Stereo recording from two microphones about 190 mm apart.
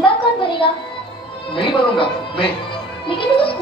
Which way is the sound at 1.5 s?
25° left (ahead or behind).